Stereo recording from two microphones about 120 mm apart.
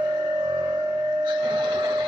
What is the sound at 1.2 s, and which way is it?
Printer, 40° right (ahead or behind).